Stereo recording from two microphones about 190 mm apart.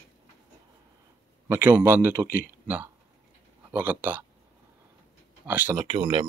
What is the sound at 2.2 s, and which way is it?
Speech, 50° left (ahead or behind).